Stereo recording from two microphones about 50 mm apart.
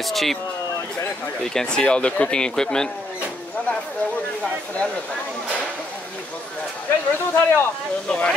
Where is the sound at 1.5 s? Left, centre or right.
Centre.